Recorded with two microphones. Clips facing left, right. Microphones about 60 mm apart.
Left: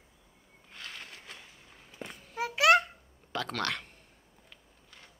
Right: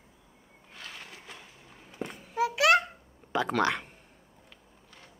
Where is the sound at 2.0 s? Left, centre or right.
Centre.